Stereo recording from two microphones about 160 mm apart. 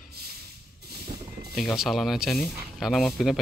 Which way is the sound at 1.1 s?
60° right (ahead or behind).